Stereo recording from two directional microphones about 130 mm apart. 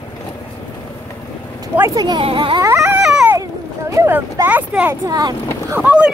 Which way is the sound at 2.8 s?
5° right (ahead or behind).